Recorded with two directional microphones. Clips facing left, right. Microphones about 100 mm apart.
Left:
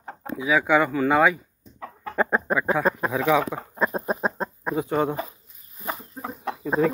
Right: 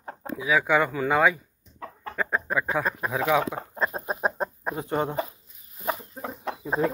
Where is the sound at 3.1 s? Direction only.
5° right (ahead or behind).